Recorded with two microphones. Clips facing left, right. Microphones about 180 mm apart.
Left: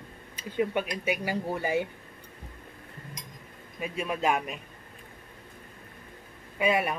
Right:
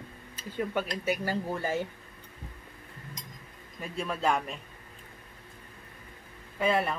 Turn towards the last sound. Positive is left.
turn(degrees=15)  # may be behind; listen again after turning